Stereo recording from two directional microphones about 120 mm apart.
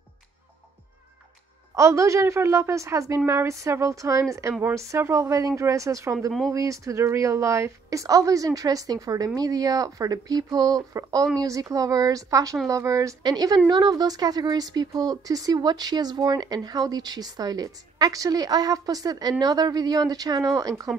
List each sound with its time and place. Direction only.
1.8 s a woman's voice: 25° right (ahead or behind)